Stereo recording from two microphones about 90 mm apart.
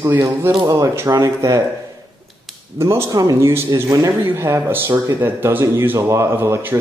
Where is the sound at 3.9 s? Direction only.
45° right (ahead or behind).